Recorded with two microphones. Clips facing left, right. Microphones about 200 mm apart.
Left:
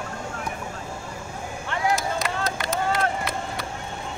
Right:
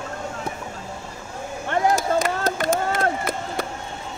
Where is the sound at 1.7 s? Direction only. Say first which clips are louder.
Right 5 dB; 50° right (ahead or behind).